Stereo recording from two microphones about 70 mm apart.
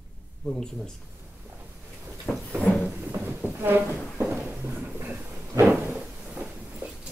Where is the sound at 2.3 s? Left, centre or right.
Left.